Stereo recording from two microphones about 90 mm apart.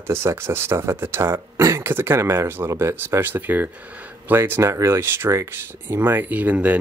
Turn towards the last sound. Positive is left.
turn(degrees=-15)  # may be behind; listen again after turning